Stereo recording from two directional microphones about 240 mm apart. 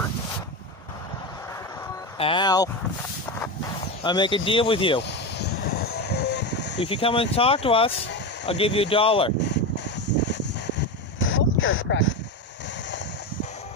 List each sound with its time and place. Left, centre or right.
2.1 s speech: left
4.0 s speech: centre
5.0 s vehicle: left
6.8 s speech: left
9.9 s a sound: left